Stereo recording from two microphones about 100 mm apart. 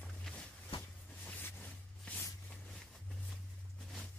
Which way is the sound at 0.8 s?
20° left (ahead or behind).